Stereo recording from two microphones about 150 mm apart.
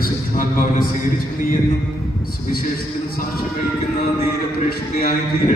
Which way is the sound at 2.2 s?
80° left.